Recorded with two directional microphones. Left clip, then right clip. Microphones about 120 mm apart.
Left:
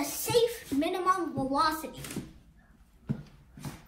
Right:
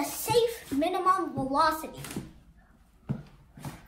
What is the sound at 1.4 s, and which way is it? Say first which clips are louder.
Speech: right 2 dB; 55° right (ahead or behind).